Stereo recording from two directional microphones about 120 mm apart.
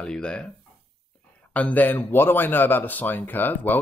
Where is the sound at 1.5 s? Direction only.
15° left (ahead or behind).